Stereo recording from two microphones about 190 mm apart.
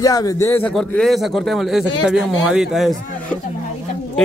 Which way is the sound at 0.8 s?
Centre (ahead or behind).